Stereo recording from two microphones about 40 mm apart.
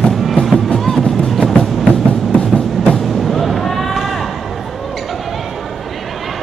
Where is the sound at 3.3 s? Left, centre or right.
Centre.